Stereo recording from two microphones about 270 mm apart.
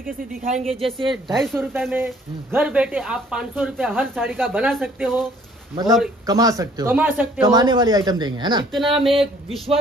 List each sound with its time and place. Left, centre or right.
0.0 s speech: right
0.7 s speech: right
1.1 s speech: centre
6.2 s speech: centre
8.7 s speech: centre